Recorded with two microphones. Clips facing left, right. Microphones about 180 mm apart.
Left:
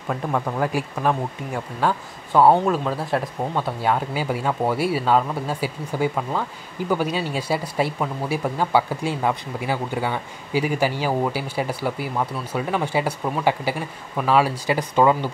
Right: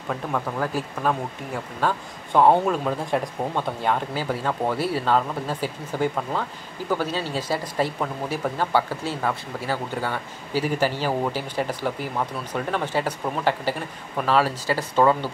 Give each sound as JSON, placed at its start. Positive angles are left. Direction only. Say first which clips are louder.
{"t": 0.1, "sound": "speech", "louder": "left 3 dB", "side_deg": 10}